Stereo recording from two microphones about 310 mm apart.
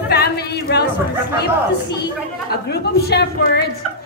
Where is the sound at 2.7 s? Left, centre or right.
Left.